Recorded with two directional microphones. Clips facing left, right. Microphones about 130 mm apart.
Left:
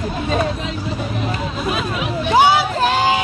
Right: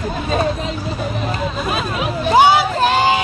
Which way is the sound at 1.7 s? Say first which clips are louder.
Right 1 dB; 40° right (ahead or behind).